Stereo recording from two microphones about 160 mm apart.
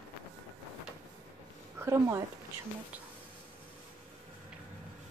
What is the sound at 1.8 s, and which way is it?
Speech, 15° right (ahead or behind).